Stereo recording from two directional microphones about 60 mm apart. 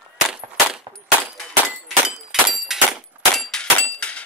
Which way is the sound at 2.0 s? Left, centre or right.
Centre.